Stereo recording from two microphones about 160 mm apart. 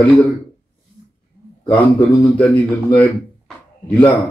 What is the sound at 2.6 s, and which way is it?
Speech, 10° left (ahead or behind).